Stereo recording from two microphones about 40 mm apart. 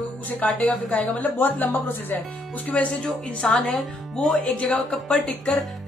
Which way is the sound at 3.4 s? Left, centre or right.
Centre.